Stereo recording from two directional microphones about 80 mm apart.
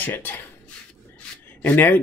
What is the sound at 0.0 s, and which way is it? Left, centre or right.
Speech, left.